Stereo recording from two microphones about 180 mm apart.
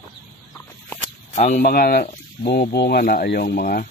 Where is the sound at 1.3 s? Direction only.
35° left (ahead or behind).